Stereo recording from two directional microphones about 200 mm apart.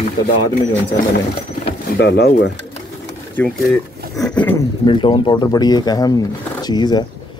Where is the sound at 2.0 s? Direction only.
55° left (ahead or behind).